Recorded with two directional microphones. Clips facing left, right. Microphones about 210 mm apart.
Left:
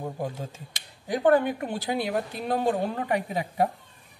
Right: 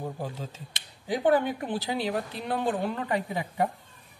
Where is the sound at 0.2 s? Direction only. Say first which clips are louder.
Left 3 dB; 50° left (ahead or behind).